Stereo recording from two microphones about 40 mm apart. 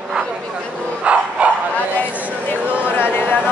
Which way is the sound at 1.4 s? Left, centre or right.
Right.